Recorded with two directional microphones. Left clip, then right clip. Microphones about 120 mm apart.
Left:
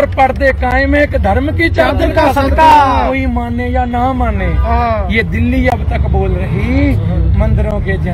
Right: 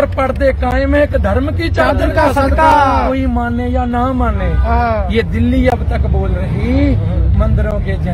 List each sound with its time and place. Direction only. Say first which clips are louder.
0.2 s speech: left 3 dB; 35° right (ahead or behind)
1.8 s speech: even; 25° right (ahead or behind)
2.5 s speech: left 5 dB; 5° right (ahead or behind)
4.2 s speech: left 1 dB; 25° right (ahead or behind)